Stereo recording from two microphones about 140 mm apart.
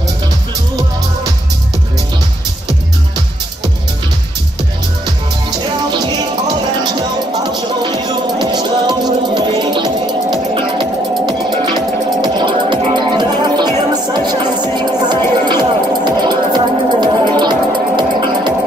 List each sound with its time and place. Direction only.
5.9 s music: 30° right (ahead or behind)